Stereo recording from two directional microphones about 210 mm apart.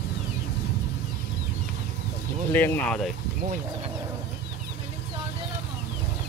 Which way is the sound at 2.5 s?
10° left (ahead or behind).